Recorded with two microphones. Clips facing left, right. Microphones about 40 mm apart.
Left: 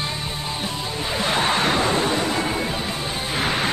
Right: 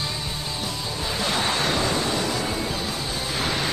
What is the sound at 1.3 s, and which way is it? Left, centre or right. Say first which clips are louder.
Music: left 4 dB; left.